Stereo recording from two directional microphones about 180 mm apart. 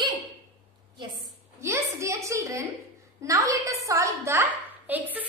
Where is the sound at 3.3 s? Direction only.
15° right (ahead or behind).